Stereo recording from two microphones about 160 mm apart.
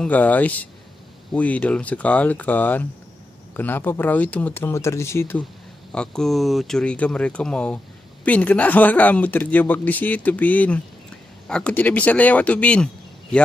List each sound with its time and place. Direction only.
0.0 s speech: 10° left (ahead or behind)
5.9 s speech: 5° left (ahead or behind)